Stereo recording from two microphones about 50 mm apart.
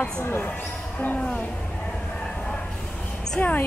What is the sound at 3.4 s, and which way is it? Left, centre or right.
Speech, left.